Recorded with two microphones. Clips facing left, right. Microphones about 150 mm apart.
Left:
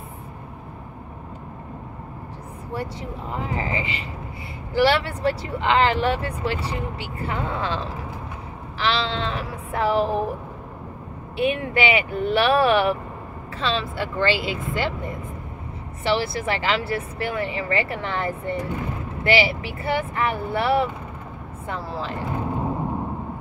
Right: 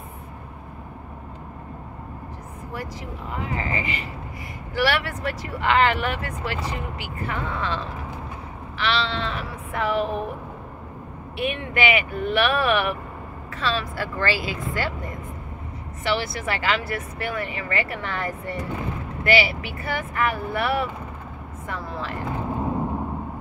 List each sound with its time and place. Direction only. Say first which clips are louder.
2.7 s speech: left 4 dB; 30° left (ahead or behind)
11.3 s speech: left 4 dB; 35° left (ahead or behind)
16.0 s speech: left 3 dB; 30° left (ahead or behind)